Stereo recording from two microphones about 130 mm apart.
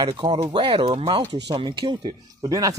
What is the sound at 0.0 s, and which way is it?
Speech, 35° right (ahead or behind).